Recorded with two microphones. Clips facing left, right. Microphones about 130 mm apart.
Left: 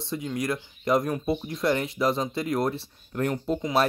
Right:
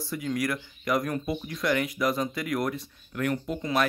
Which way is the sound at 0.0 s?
25° left (ahead or behind).